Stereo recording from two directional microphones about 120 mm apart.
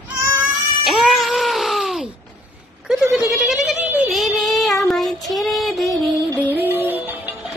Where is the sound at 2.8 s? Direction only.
5° right (ahead or behind).